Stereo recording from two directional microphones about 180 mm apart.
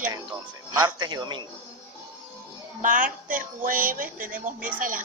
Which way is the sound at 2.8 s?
50° right (ahead or behind).